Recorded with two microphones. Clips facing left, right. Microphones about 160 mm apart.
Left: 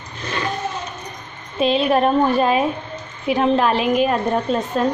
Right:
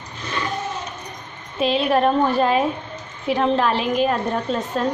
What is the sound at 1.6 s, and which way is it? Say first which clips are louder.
A woman's voice: left 2 dB; 20° left (ahead or behind).